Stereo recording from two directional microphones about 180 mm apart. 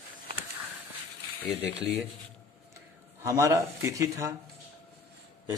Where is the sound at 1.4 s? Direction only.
Centre (ahead or behind).